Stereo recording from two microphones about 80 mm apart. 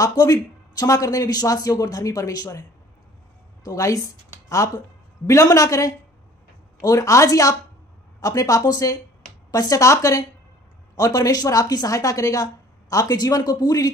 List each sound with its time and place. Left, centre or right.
0.0 s speech: left
3.6 s a woman's voice: left